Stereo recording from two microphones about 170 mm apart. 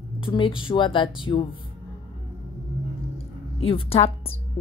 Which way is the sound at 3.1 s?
35° left (ahead or behind).